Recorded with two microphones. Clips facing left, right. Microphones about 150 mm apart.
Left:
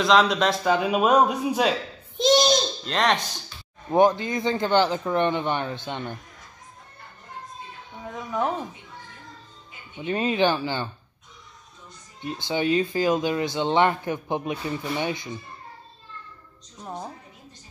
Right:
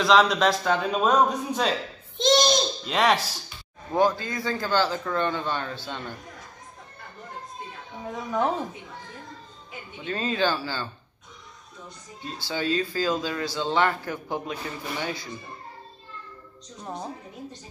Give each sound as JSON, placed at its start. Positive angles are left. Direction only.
{"t": 0.0, "sound": "a child's voice", "side_deg": 0}
{"t": 0.7, "sound": "a child's voice", "side_deg": 10}
{"t": 3.9, "sound": "speech", "side_deg": 20}
{"t": 10.0, "sound": "speech", "side_deg": 20}
{"t": 12.2, "sound": "speech", "side_deg": 20}